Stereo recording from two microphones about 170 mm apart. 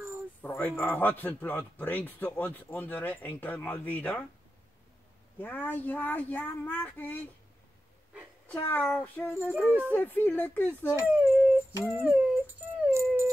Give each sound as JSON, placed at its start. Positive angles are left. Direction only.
{"t": 0.4, "sound": "speech", "side_deg": 10}
{"t": 5.4, "sound": "speech", "side_deg": 10}
{"t": 8.5, "sound": "speech", "side_deg": 10}
{"t": 9.7, "sound": "speech", "side_deg": -10}
{"t": 9.9, "sound": "speech", "side_deg": 10}
{"t": 10.9, "sound": "speech", "side_deg": -10}
{"t": 12.9, "sound": "dog", "side_deg": -15}